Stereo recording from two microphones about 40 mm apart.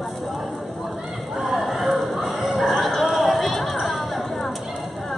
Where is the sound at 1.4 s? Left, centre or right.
Centre.